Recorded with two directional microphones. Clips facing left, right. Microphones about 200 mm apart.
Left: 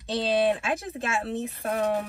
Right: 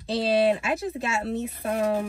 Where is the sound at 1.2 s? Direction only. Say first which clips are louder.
Right 2 dB; centre (ahead or behind).